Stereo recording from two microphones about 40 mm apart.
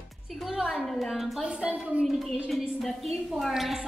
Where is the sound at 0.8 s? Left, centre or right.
Centre.